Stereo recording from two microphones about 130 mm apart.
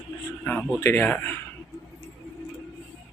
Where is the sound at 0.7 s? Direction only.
15° left (ahead or behind).